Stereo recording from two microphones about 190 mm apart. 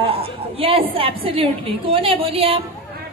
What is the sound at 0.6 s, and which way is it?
A man's voice, 30° right (ahead or behind).